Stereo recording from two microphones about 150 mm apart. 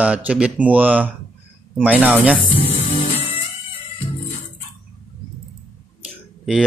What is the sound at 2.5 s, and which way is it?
Music, 35° left (ahead or behind).